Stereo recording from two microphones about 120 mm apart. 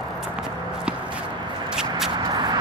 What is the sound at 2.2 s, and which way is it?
Vehicle, 35° right (ahead or behind).